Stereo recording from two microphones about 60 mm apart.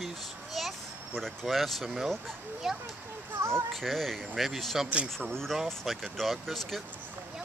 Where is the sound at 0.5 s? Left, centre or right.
Centre.